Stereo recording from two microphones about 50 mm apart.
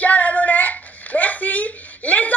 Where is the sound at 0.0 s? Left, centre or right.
Left.